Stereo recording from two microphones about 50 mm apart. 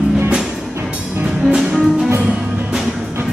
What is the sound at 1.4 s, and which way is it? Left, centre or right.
Music, centre.